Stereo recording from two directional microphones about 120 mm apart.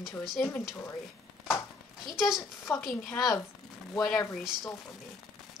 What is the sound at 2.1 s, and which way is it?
A woman's voice, 5° right (ahead or behind).